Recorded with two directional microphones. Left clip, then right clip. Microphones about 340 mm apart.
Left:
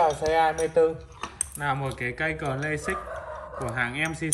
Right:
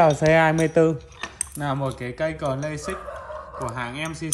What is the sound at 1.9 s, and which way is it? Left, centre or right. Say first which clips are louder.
Speech: right 2 dB; centre.